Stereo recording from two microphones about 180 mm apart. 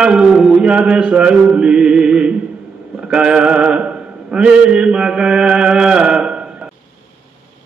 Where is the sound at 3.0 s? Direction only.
5° right (ahead or behind).